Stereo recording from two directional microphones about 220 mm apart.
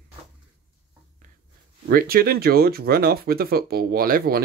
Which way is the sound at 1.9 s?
45° right (ahead or behind).